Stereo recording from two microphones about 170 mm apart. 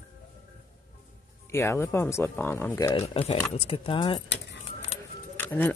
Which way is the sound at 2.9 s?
35° left (ahead or behind).